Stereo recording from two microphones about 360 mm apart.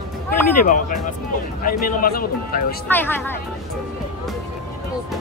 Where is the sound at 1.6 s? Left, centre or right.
Left.